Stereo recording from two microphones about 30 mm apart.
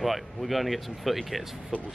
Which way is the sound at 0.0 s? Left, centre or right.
Centre.